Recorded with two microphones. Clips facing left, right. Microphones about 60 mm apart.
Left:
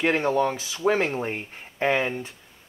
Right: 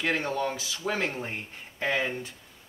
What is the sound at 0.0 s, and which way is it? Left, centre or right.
Speech, left.